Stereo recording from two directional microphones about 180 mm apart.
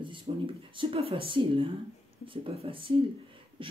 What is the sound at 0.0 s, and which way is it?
Speech, 30° right (ahead or behind).